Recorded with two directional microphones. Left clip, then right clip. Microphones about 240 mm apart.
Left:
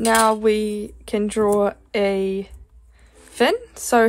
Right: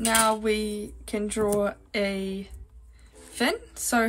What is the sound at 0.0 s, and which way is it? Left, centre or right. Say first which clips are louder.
Speech: left 7 dB; left.